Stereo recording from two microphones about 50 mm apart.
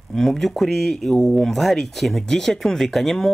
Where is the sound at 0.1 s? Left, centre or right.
Centre.